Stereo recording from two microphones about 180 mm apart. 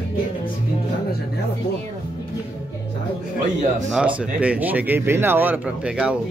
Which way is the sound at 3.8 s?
5° right (ahead or behind).